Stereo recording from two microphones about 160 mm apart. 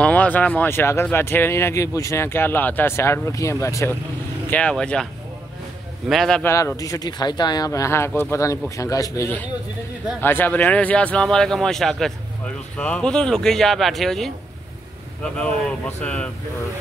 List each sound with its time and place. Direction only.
0.0 s speech: 10° left (ahead or behind)
4.5 s speech: 5° left (ahead or behind)
6.0 s speech: centre (ahead or behind)
6.4 s speech: 15° left (ahead or behind); by 14.3 s centre (ahead or behind)
16.0 s speech: 5° left (ahead or behind)